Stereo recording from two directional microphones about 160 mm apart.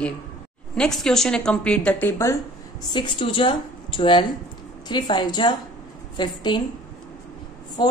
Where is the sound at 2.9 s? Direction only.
30° left (ahead or behind).